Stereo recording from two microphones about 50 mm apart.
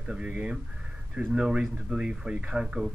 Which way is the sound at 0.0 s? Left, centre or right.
Right.